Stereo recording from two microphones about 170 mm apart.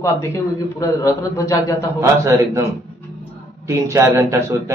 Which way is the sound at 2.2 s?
15° right (ahead or behind).